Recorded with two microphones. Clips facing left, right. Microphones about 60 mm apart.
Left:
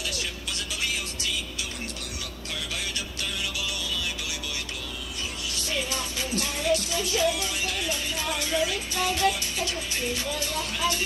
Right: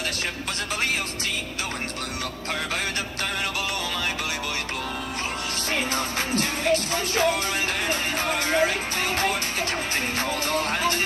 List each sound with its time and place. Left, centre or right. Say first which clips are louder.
0.7 s music: right 5 dB; right
2.5 s music: right 6 dB; right
5.7 s music: right 4 dB; right